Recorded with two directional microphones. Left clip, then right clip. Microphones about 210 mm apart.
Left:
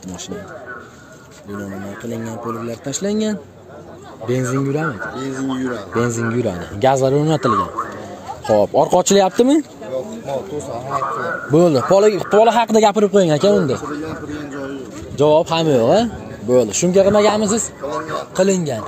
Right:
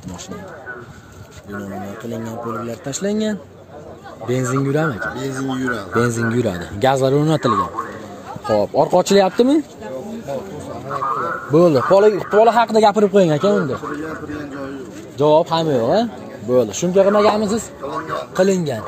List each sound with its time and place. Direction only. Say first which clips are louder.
2.2 s a man's voice: right 1 dB; centre (ahead or behind)
4.6 s speech: right 2 dB; 15° right (ahead or behind)
5.1 s speech: even; 50° right (ahead or behind)
5.9 s a man's voice: right 1 dB; 5° right (ahead or behind)
8.5 s speech: left 2 dB; 15° left (ahead or behind)
11.5 s speech: even; 20° left (ahead or behind)
15.1 s speech: even; 20° left (ahead or behind)
18.3 s a man's voice: even; centre (ahead or behind)